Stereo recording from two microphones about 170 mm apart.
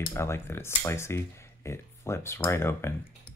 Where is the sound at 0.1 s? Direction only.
15° left (ahead or behind).